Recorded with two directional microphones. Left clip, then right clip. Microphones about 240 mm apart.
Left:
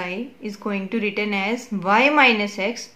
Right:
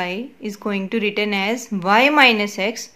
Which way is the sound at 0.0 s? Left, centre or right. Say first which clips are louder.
Right 3 dB; right.